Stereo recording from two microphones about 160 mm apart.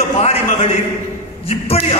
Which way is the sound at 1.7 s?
40° left (ahead or behind).